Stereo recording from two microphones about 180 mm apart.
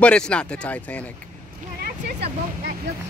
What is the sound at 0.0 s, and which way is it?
Speech, 5° left (ahead or behind).